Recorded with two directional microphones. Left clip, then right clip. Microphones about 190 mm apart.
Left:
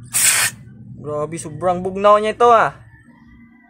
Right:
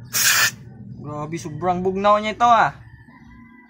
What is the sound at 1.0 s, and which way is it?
Speech, 50° left (ahead or behind).